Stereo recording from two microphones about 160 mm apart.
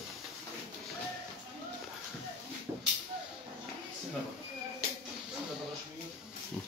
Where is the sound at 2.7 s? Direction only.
20° right (ahead or behind).